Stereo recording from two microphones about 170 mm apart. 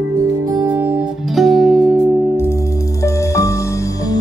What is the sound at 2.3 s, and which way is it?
Music, 15° left (ahead or behind).